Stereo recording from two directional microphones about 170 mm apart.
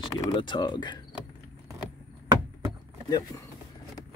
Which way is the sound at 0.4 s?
30° left (ahead or behind).